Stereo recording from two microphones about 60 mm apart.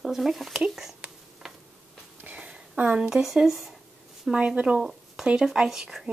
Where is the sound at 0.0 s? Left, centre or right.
Centre.